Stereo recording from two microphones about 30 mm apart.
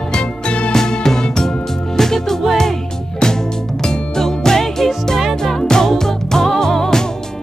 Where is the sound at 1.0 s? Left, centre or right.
Centre.